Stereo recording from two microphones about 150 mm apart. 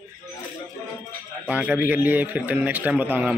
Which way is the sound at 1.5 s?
10° right (ahead or behind).